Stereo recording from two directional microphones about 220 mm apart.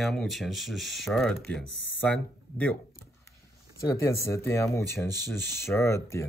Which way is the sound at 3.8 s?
15° left (ahead or behind).